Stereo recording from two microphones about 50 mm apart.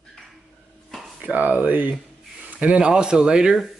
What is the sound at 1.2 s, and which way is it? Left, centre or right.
Speech, right.